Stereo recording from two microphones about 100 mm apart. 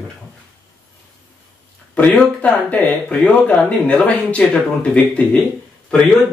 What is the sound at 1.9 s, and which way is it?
Speech, 15° left (ahead or behind).